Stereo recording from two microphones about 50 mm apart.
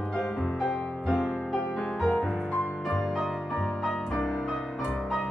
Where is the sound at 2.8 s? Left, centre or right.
Centre.